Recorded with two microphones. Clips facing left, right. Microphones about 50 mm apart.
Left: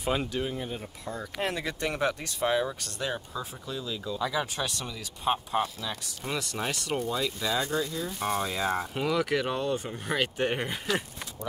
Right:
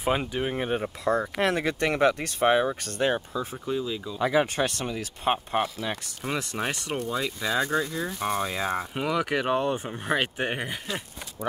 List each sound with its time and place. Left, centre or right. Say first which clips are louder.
0.0 s speech: right 3 dB; right
0.6 s speech: right 8 dB; right
3.3 s speech: right 7 dB; right
4.2 s speech: right 8 dB; right
6.2 s speech: right 3 dB; right
8.2 s speech: even; centre
10.5 s speech: left 2 dB; centre